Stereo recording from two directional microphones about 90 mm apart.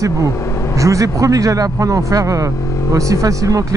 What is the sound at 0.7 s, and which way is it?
Speech, 35° right (ahead or behind).